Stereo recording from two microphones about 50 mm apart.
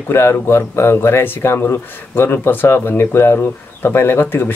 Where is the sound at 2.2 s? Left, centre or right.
Left.